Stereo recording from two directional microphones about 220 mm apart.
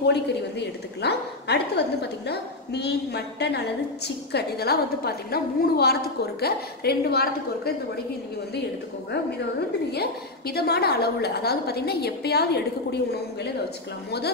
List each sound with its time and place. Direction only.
0.0 s a woman's voice: 50° left (ahead or behind)
9.8 s a woman's voice: 45° left (ahead or behind)